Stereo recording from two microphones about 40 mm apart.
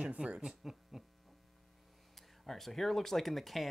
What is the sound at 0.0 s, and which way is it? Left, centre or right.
Speech, right.